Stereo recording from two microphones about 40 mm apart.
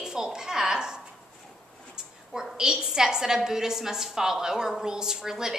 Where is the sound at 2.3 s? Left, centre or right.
Centre.